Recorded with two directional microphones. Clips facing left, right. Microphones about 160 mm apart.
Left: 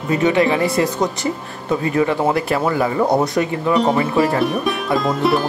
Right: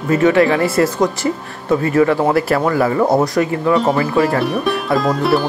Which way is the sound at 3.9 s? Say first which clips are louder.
Right 1 dB; 25° left (ahead or behind).